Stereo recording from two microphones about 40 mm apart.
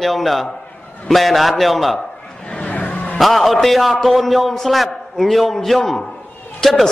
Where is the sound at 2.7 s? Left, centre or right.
Left.